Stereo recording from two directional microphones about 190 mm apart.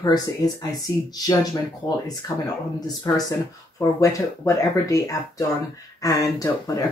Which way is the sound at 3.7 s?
15° left (ahead or behind).